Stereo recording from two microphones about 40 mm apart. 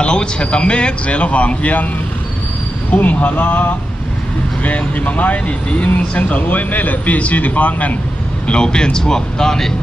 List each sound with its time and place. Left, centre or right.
0.0 s a man's voice: left
2.9 s speech: left
8.5 s speech: left